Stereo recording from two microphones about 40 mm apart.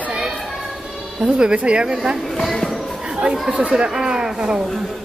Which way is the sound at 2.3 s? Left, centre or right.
Centre.